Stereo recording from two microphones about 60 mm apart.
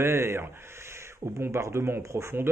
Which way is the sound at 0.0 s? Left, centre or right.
Right.